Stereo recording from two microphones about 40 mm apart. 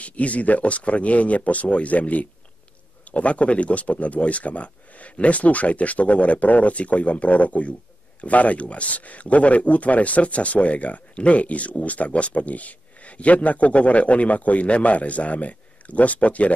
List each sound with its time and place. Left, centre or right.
0.0 s speech: left